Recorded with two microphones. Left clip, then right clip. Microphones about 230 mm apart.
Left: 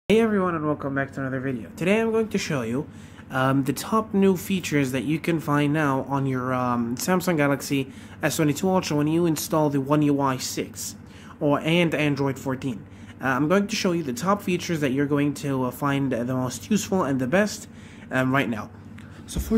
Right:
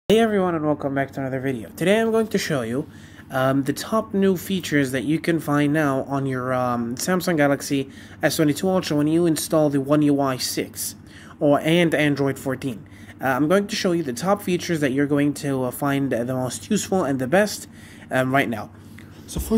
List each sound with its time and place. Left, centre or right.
0.1 s speech: centre